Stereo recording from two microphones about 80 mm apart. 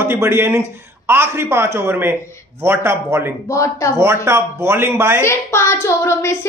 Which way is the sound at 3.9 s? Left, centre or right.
Right.